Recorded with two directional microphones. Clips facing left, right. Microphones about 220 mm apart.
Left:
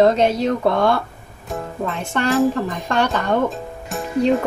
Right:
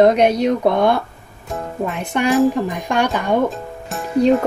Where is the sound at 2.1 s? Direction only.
15° right (ahead or behind).